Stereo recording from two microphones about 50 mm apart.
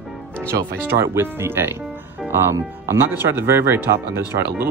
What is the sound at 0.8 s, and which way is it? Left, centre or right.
Speech, right.